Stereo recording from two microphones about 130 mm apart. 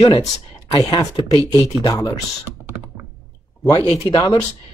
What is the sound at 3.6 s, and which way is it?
Speech, 30° left (ahead or behind).